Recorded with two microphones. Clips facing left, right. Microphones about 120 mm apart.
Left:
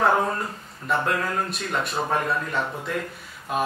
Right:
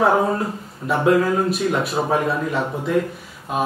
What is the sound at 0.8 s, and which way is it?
Speech, 5° right (ahead or behind).